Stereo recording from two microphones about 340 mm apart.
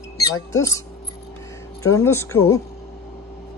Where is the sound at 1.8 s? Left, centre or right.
Centre.